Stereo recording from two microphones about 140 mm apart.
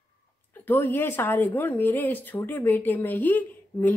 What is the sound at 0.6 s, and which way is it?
A woman's voice, 15° left (ahead or behind).